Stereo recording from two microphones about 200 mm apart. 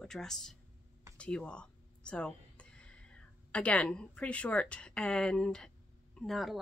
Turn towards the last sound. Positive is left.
turn(degrees=0)  # may be behind; listen again after turning